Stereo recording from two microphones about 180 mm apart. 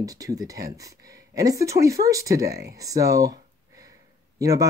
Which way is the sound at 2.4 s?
60° right (ahead or behind).